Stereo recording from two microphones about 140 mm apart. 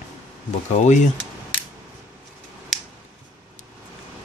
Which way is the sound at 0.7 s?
55° left (ahead or behind).